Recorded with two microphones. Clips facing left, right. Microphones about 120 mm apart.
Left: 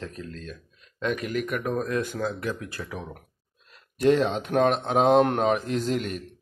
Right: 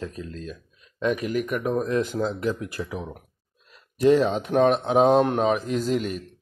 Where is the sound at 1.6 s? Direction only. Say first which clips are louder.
Right 4 dB; 25° right (ahead or behind).